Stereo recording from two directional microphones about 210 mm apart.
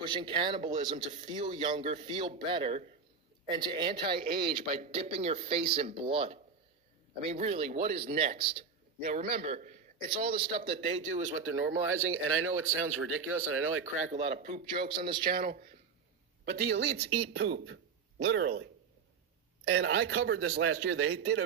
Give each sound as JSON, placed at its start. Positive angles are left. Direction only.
{"t": 0.0, "sound": "speech", "side_deg": -20}
{"t": 1.1, "sound": "a man's voice", "side_deg": -35}
{"t": 1.4, "sound": "speech", "side_deg": -25}
{"t": 1.8, "sound": "a man's voice", "side_deg": -35}
{"t": 2.0, "sound": "speech", "side_deg": -25}
{"t": 9.0, "sound": "a woman's voice", "side_deg": -45}
{"t": 9.3, "sound": "speech", "side_deg": -25}
{"t": 11.4, "sound": "speech", "side_deg": -85}
{"t": 14.0, "sound": "a man's voice", "side_deg": -30}
{"t": 17.3, "sound": "speech", "side_deg": -65}
{"t": 19.6, "sound": "a man's voice", "side_deg": -90}